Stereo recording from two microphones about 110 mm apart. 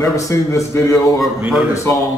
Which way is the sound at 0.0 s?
30° left (ahead or behind).